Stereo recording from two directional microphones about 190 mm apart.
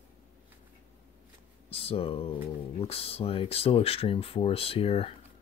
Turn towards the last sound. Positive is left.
turn(degrees=30)  # may be behind; listen again after turning